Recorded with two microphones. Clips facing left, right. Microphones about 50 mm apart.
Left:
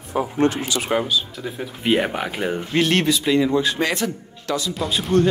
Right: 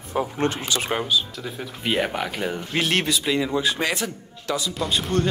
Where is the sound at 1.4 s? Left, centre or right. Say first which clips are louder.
Left 4 dB; centre.